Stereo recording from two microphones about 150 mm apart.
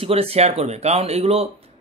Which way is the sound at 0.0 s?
40° right (ahead or behind).